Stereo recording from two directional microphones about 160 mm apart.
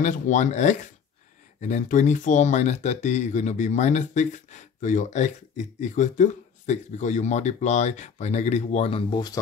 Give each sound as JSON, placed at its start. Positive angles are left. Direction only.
{"t": 0.0, "sound": "speech", "side_deg": 50}